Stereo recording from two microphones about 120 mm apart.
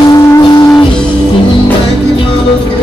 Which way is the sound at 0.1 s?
35° left (ahead or behind).